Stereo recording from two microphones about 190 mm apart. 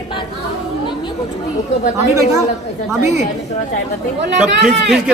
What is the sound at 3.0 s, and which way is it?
Speech, 35° left (ahead or behind).